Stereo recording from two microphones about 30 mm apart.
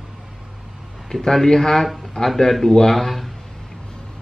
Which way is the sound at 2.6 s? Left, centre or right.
Centre.